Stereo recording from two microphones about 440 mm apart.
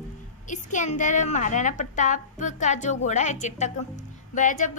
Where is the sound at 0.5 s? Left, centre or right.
Centre.